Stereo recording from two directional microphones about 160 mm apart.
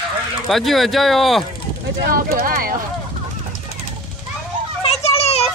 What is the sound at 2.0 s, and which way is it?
Speech, 65° right (ahead or behind).